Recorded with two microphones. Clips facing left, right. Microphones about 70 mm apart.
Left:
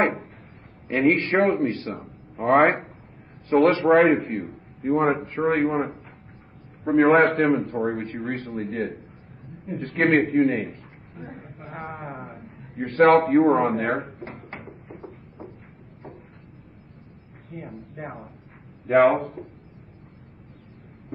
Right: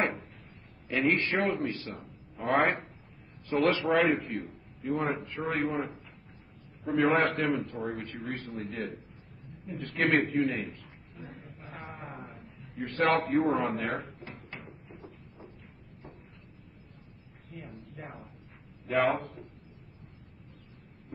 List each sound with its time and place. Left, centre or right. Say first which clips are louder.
0.0 s a sound: left 8 dB; left
0.8 s a man's voice: left 7 dB; left
2.3 s speech: left 9 dB; left
3.4 s a man's voice: left 9 dB; left
3.9 s a man's voice: left 10 dB; left
4.2 s a man's voice: left 7 dB; left
4.8 s a man's voice: left 9 dB; left
14.0 s a sound: left 8 dB; left
14.9 s a sound: left 8 dB; left
17.5 s a man's voice: left 8 dB; left